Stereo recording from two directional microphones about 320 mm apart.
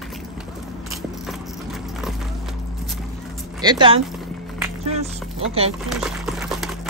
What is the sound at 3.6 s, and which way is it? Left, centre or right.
Speech, centre.